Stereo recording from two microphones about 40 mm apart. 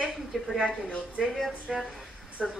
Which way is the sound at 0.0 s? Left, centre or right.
Centre.